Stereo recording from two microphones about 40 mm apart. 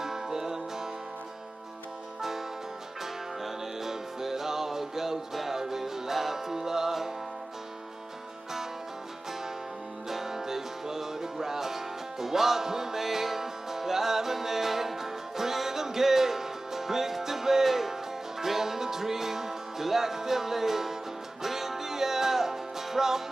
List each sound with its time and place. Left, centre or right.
0.0 s music: centre
3.8 s music: centre
10.0 s music: centre